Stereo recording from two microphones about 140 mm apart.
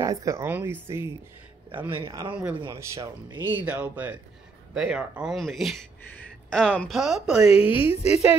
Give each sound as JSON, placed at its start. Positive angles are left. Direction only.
{"t": 0.0, "sound": "speech", "side_deg": -25}
{"t": 2.7, "sound": "speech", "side_deg": -20}
{"t": 7.4, "sound": "a woman's voice", "side_deg": 45}